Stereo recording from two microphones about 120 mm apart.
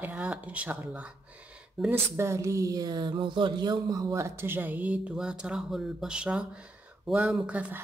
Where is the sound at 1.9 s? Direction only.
25° right (ahead or behind).